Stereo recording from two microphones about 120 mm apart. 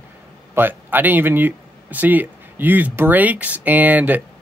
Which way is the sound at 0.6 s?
15° right (ahead or behind).